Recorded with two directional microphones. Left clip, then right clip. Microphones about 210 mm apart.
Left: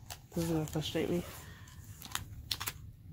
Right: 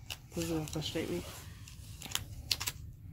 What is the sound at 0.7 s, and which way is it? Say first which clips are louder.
Speech: left 2 dB; 50° left (ahead or behind).